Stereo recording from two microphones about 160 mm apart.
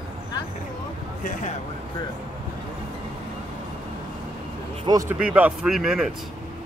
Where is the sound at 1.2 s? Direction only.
55° left (ahead or behind).